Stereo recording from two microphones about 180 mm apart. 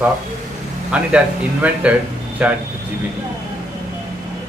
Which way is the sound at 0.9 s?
5° right (ahead or behind).